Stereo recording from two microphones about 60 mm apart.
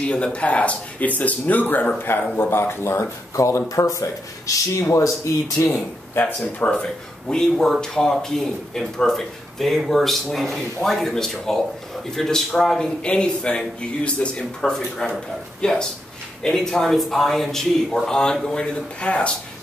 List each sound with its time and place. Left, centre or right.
0.0 s speech: centre; by 5.7 s left
6.2 s speech: left
6.7 s speech: centre